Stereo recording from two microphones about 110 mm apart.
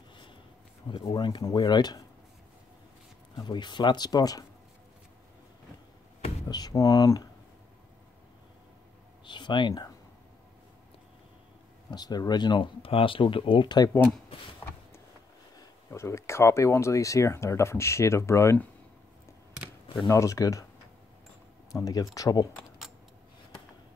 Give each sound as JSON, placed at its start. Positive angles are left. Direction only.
{"t": 0.8, "sound": "speech", "side_deg": 50}
{"t": 3.3, "sound": "speech", "side_deg": 40}
{"t": 6.5, "sound": "speech", "side_deg": 35}
{"t": 9.2, "sound": "a sound", "side_deg": 45}
{"t": 11.9, "sound": "speech", "side_deg": 40}
{"t": 15.5, "sound": "speech", "side_deg": 25}
{"t": 20.1, "sound": "speech", "side_deg": 30}
{"t": 21.7, "sound": "speech", "side_deg": 35}